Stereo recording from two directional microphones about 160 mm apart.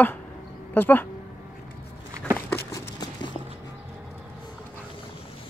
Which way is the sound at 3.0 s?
25° left (ahead or behind).